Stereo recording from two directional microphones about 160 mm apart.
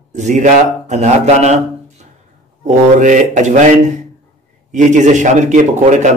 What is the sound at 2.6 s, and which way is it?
Speech, 50° right (ahead or behind).